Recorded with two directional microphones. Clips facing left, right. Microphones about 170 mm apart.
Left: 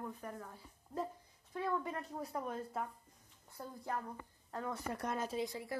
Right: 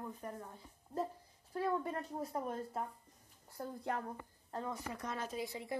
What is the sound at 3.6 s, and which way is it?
Speech, 65° right (ahead or behind).